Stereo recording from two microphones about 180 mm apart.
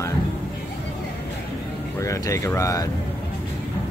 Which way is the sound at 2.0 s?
15° left (ahead or behind).